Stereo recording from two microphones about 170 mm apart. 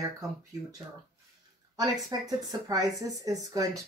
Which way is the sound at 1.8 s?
20° right (ahead or behind).